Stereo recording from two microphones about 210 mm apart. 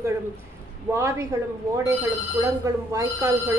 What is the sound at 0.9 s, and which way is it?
Speech, 15° right (ahead or behind).